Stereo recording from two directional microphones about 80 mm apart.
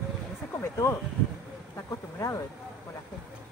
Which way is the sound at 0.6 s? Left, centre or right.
Left.